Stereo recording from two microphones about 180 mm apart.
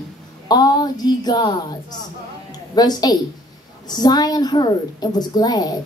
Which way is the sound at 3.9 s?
20° left (ahead or behind).